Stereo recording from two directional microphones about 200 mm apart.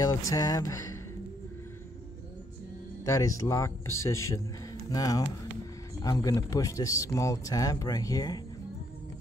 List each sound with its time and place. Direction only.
0.0 s speech: 15° left (ahead or behind)
3.1 s speech: 15° left (ahead or behind)